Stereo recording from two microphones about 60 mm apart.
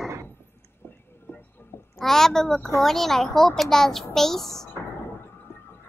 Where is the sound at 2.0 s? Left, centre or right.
Centre.